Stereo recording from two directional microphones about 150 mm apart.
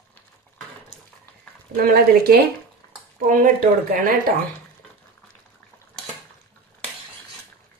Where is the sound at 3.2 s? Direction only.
70° right (ahead or behind).